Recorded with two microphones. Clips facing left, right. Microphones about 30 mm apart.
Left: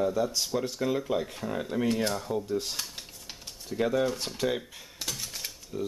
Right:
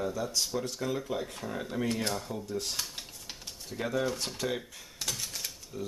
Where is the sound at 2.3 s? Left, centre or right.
Centre.